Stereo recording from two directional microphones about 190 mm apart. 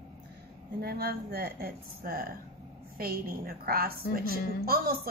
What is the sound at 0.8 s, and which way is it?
A woman's voice, 55° right (ahead or behind).